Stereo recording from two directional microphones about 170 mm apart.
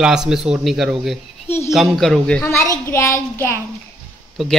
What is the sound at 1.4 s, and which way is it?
Speech, 15° left (ahead or behind).